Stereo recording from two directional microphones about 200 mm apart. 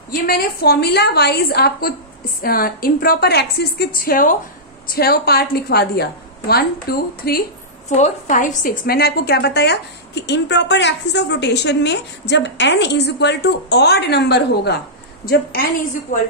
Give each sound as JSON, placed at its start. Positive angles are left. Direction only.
{"t": 0.1, "sound": "a woman's voice", "side_deg": 50}
{"t": 7.9, "sound": "a woman's voice", "side_deg": 40}